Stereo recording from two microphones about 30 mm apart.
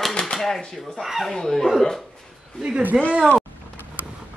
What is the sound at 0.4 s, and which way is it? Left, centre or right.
Speech, centre.